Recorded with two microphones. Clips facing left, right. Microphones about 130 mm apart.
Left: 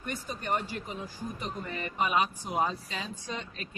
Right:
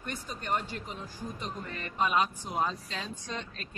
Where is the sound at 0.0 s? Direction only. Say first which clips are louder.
Left 2 dB; 5° left (ahead or behind).